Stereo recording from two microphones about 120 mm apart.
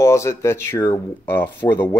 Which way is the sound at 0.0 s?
25° left (ahead or behind).